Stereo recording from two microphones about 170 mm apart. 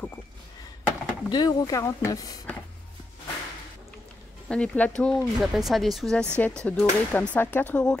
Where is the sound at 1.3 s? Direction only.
20° left (ahead or behind).